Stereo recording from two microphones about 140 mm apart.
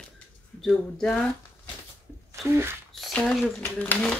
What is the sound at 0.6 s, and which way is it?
Speech, centre (ahead or behind).